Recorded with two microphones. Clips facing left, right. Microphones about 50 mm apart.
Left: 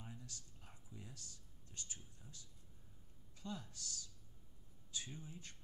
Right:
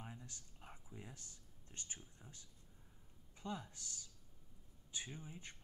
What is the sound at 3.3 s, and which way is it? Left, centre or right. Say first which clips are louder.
Speech: right 2 dB; right.